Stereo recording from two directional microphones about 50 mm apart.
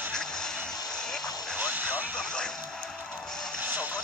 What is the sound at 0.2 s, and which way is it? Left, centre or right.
Vehicle, centre.